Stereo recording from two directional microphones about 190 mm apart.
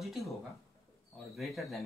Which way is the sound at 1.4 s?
Centre (ahead or behind).